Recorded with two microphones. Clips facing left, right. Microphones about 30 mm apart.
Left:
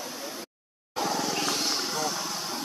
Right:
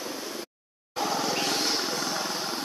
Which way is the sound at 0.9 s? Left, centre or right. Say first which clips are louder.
Right 1 dB; centre.